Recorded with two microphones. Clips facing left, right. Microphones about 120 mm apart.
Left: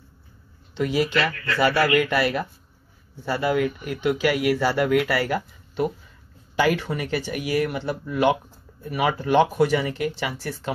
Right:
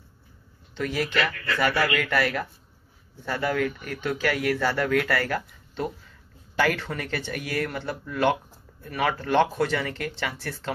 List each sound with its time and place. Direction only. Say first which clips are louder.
0.7 s speech: left 4 dB; 15° left (ahead or behind)